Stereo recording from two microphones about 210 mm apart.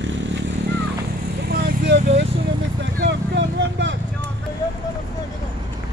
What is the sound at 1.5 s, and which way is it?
Vehicle, 55° right (ahead or behind).